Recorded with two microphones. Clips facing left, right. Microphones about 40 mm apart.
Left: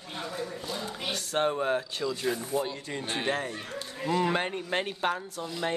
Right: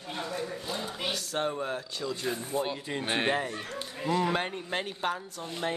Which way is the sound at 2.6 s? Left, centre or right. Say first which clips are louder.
Right 2 dB; right.